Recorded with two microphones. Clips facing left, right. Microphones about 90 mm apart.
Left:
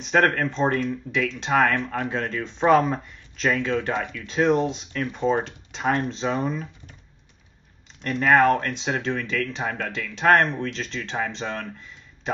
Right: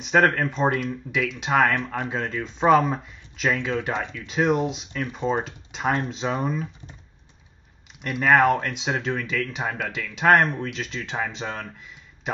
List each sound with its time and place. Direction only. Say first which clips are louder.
0.0 s speech: right 1 dB; 5° right (ahead or behind)
3.9 s speech: left 1 dB; 20° right (ahead or behind)
4.3 s speech: left 1 dB; 5° right (ahead or behind)
8.0 s speech: even; 10° right (ahead or behind)